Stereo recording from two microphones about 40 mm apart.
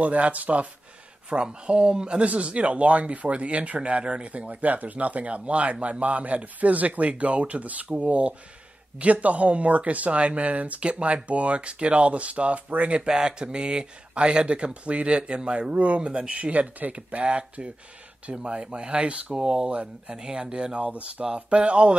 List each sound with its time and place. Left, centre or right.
0.0 s speech: right
1.3 s speech: right
13.0 s speech: right
19.3 s speech: centre